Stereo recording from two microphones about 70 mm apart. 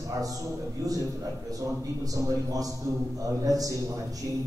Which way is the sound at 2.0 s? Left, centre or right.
Right.